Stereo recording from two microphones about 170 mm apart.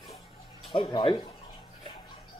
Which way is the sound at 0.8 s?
25° left (ahead or behind).